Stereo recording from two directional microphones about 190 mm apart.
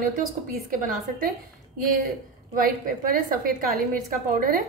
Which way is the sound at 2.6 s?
50° right (ahead or behind).